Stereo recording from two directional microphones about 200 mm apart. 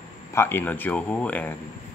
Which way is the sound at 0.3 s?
10° left (ahead or behind).